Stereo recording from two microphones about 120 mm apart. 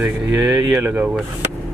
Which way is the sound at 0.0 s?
5° right (ahead or behind).